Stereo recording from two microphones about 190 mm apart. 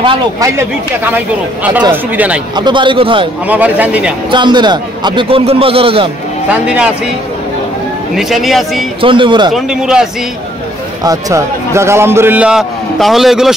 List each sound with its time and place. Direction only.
0.0 s a man's voice: 25° right (ahead or behind)
1.1 s a man's voice: 10° right (ahead or behind)
2.5 s a man's voice: 25° right (ahead or behind)
3.4 s a man's voice: 10° right (ahead or behind)
4.3 s a man's voice: 25° right (ahead or behind)
8.2 s speech: centre (ahead or behind)
9.0 s a man's voice: 25° right (ahead or behind)
9.5 s speech: 5° right (ahead or behind)
11.1 s a man's voice: 15° right (ahead or behind); by 13.5 s centre (ahead or behind)